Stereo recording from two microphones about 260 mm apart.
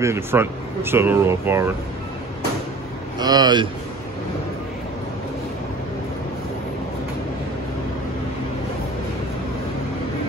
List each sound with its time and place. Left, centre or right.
0.0 s speech: centre
3.2 s speech: centre